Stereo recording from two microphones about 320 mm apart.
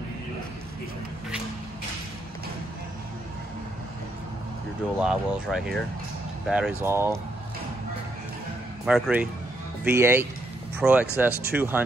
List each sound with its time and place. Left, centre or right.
5.0 s speech: centre
8.8 s speech: centre